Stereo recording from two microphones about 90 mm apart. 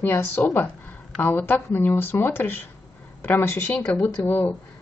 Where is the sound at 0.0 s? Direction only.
25° left (ahead or behind).